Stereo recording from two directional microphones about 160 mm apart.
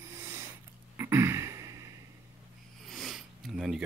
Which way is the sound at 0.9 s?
15° right (ahead or behind).